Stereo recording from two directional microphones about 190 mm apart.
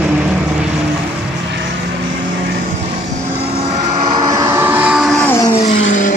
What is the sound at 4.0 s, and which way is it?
Vehicle, 30° right (ahead or behind).